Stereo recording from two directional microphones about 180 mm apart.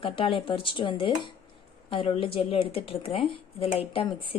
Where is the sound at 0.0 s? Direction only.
30° left (ahead or behind).